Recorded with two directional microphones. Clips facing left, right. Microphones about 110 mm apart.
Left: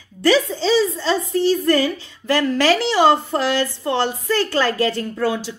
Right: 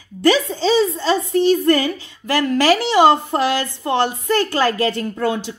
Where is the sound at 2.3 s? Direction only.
10° right (ahead or behind).